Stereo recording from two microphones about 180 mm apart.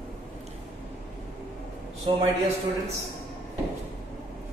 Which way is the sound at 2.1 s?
30° right (ahead or behind).